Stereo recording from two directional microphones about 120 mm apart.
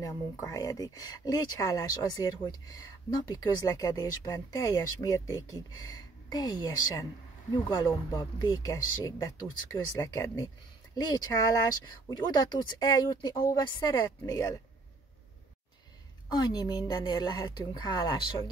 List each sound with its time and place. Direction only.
0.0 s speech: 30° left (ahead or behind)
16.3 s speech: 35° left (ahead or behind)